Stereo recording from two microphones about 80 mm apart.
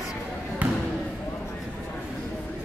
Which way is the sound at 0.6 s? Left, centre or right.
Centre.